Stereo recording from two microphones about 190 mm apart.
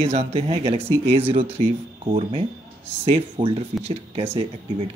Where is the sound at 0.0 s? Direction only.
35° right (ahead or behind).